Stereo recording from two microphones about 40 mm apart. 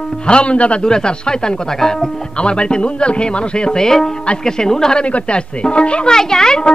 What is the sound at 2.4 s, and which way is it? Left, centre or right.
Speech, left.